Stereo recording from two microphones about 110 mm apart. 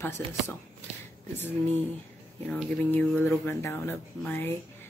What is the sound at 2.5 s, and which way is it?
A woman's voice, 15° left (ahead or behind).